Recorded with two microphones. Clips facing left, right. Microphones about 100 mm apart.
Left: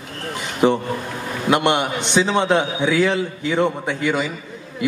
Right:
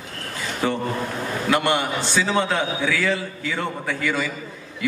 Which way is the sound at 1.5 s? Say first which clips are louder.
Left 4 dB; 20° left (ahead or behind).